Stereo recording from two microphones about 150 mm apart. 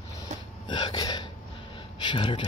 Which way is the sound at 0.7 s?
30° left (ahead or behind).